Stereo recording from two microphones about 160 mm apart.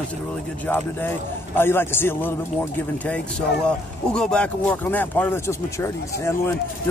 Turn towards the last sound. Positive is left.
turn(degrees=15)  # may be behind; listen again after turning